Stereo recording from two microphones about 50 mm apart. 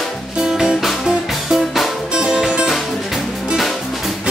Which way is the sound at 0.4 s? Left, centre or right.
Centre.